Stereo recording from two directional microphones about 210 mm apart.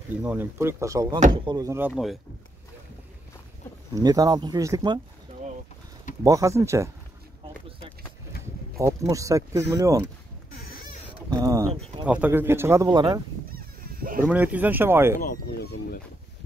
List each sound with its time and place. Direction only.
0.2 s speech: 10° right (ahead or behind)
3.9 s speech: 15° right (ahead or behind)
8.7 s speech: 15° right (ahead or behind)
11.2 s speech: 15° right (ahead or behind)
14.2 s speech: 5° right (ahead or behind)
15.1 s speech: 45° left (ahead or behind)